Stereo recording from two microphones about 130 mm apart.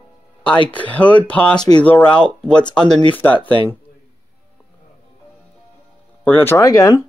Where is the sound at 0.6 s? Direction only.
10° left (ahead or behind).